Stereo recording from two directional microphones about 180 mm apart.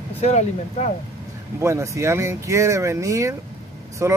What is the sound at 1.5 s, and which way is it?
A man's voice, 15° right (ahead or behind).